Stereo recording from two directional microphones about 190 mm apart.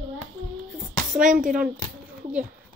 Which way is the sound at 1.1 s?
40° right (ahead or behind).